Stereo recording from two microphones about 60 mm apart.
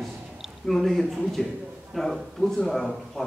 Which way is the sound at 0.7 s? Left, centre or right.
Centre.